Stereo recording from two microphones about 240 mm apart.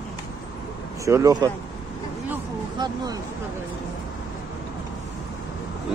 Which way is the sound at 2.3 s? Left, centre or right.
Centre.